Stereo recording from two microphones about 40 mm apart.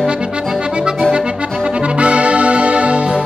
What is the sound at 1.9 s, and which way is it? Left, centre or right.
Brass instrument, right.